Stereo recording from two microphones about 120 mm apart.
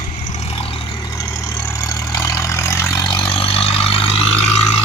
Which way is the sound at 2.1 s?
25° left (ahead or behind).